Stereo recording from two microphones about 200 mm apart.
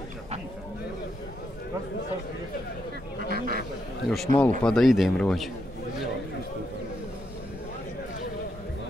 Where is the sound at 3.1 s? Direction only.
50° right (ahead or behind).